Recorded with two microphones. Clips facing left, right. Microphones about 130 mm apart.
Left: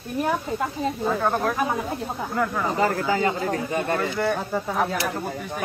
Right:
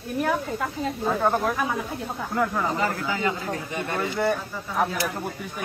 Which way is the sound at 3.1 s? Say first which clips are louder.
Left 4 dB; 30° left (ahead or behind).